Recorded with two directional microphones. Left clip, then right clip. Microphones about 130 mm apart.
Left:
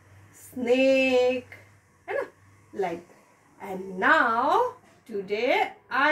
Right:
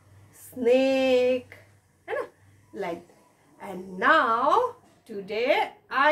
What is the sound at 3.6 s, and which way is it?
A woman's voice, 20° right (ahead or behind).